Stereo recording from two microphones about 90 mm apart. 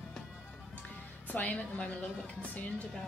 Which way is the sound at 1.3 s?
15° left (ahead or behind).